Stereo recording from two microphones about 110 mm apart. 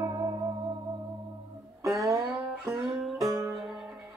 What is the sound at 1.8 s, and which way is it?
Music, 30° right (ahead or behind).